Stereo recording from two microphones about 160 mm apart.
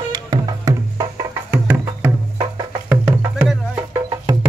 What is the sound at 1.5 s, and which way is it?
Music, 10° right (ahead or behind).